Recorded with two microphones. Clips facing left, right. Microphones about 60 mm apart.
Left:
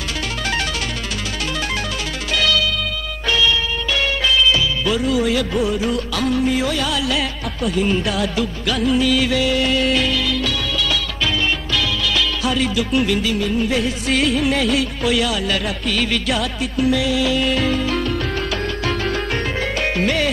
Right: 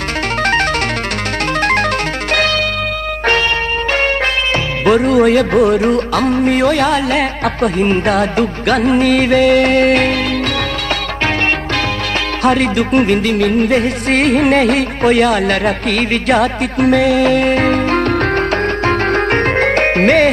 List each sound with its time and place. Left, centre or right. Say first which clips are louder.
2.3 s music: right 3 dB; right
12.4 s music: right 10 dB; right